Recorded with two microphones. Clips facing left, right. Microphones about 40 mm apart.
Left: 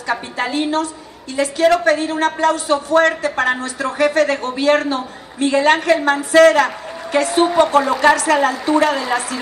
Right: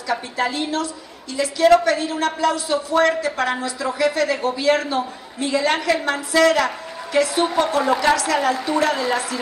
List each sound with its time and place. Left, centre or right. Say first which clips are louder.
0.1 s a man's voice: left 2 dB; left